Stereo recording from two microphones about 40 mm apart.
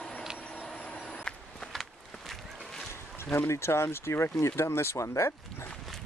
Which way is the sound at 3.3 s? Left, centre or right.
Left.